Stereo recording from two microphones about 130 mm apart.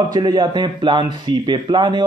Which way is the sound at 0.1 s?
30° right (ahead or behind).